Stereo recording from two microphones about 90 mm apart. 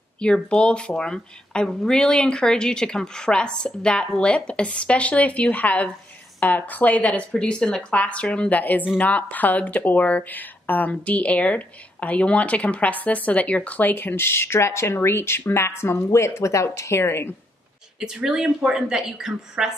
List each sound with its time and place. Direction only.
0.2 s speech: 10° left (ahead or behind); by 17.3 s 30° left (ahead or behind)
17.9 s speech: 5° right (ahead or behind)